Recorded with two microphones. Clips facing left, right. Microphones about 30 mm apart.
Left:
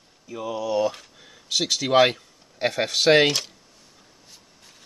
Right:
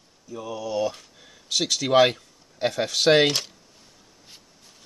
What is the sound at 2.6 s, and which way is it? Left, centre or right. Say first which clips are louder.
Speech: left 1 dB; left.